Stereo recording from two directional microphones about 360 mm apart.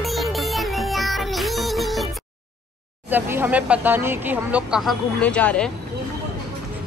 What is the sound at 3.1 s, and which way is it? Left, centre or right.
Speech, centre.